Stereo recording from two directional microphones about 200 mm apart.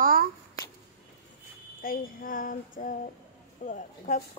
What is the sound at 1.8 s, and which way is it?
Music, 45° left (ahead or behind).